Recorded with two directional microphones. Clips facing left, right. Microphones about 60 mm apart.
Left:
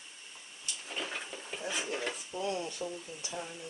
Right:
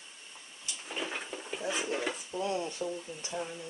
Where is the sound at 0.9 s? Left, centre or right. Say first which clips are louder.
Right 2 dB; centre.